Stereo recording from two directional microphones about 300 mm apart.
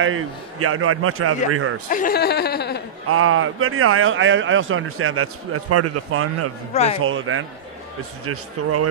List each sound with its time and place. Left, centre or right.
0.0 s a man's voice: right
1.9 s speech: left
3.1 s a man's voice: right
6.7 s a man's voice: left
7.0 s a man's voice: right
8.6 s a man's voice: right